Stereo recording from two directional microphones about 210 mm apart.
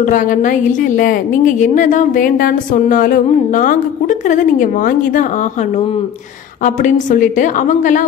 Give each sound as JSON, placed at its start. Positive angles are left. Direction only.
{"t": 0.0, "sound": "a woman's voice", "side_deg": 40}